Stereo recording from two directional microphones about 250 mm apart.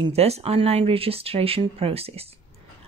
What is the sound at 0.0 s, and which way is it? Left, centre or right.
Speech, right.